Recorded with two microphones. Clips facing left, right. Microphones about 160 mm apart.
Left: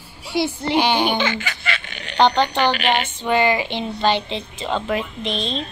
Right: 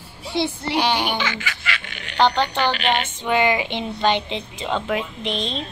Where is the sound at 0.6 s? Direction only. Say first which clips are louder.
Left 5 dB; 25° left (ahead or behind); by 3.1 s 10° left (ahead or behind).